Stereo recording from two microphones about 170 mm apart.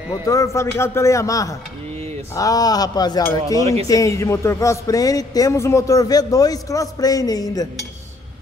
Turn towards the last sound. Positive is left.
turn(degrees=20)  # may be behind; listen again after turning